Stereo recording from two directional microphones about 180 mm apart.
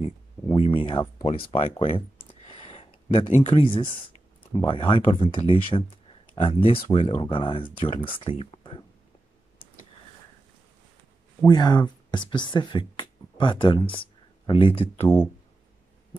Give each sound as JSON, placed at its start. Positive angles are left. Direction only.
{"t": 0.6, "sound": "speech", "side_deg": 30}
{"t": 1.8, "sound": "a sound", "side_deg": 30}
{"t": 3.4, "sound": "speech", "side_deg": 30}
{"t": 11.4, "sound": "speech", "side_deg": 25}